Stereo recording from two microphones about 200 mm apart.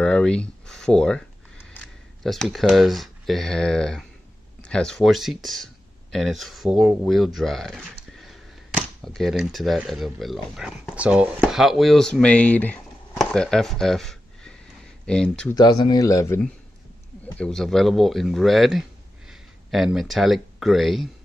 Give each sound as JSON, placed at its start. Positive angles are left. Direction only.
{"t": 0.0, "sound": "a sound", "side_deg": 5}
{"t": 1.7, "sound": "speech", "side_deg": 5}
{"t": 15.8, "sound": "a man's voice", "side_deg": 20}
{"t": 17.4, "sound": "speech", "side_deg": 0}